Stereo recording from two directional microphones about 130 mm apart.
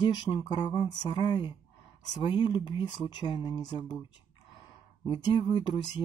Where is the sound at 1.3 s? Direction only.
35° left (ahead or behind).